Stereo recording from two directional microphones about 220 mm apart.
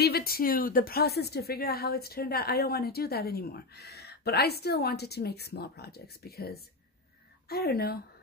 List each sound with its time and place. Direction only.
0.0 s a woman's voice: 45° left (ahead or behind)